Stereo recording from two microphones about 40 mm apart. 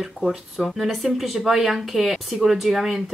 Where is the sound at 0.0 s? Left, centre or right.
Centre.